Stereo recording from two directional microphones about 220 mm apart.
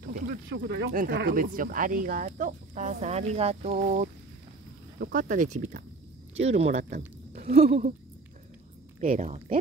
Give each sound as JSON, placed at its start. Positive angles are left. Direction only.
{"t": 0.5, "sound": "speech", "side_deg": -55}
{"t": 9.0, "sound": "speech", "side_deg": -35}